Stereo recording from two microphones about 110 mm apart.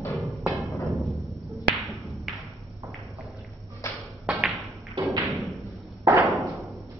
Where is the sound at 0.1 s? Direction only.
Centre (ahead or behind).